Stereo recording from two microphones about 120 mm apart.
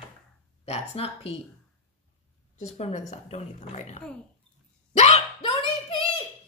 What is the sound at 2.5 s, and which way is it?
A woman's voice, 70° left (ahead or behind).